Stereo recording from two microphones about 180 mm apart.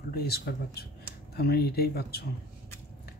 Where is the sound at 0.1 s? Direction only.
60° left (ahead or behind).